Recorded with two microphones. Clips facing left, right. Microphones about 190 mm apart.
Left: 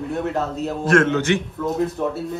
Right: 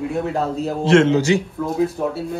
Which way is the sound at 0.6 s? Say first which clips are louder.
Right 3 dB; 25° right (ahead or behind).